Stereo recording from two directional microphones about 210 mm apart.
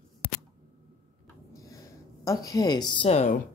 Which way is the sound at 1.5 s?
15° left (ahead or behind).